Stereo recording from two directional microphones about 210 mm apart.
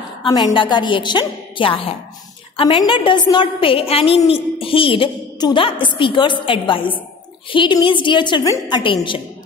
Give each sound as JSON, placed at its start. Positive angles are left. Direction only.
{"t": 0.2, "sound": "a woman's voice", "side_deg": 20}